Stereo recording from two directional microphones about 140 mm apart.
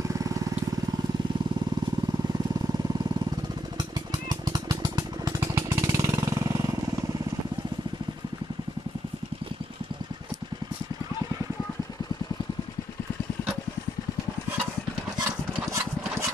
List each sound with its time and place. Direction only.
0.1 s vehicle: 25° right (ahead or behind)
4.3 s jackhammer: 30° right (ahead or behind)